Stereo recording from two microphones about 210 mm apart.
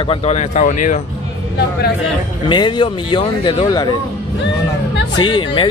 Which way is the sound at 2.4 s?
20° left (ahead or behind).